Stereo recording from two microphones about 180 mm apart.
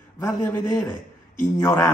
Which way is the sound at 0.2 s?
10° left (ahead or behind).